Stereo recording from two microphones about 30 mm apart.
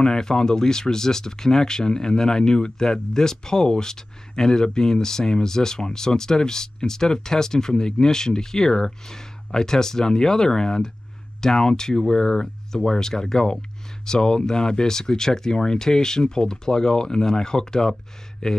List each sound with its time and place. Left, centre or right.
0.0 s speech: left